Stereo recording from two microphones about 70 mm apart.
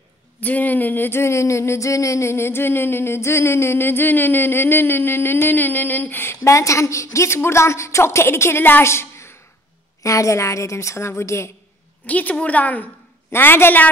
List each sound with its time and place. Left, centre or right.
0.4 s speech: left
6.4 s speech: left
8.8 s a sound: left
10.0 s a woman's voice: left
12.1 s a woman's voice: left
13.3 s speech: left